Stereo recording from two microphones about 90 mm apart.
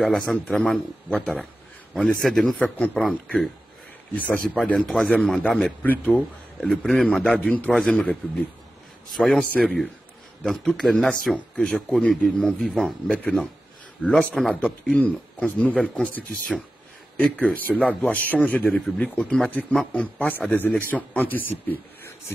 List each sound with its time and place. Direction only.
0.0 s a man's voice: 5° left (ahead or behind)
4.1 s speech: 20° left (ahead or behind)
4.7 s a man's voice: 5° left (ahead or behind)
5.8 s speech: 20° left (ahead or behind)
6.1 s a man's voice: 5° left (ahead or behind)
19.9 s a man's voice: 15° left (ahead or behind)